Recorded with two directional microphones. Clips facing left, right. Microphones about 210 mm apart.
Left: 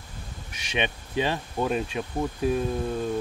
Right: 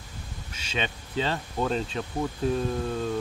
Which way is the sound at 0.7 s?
20° left (ahead or behind).